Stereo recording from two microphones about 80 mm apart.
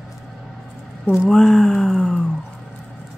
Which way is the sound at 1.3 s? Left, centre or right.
Centre.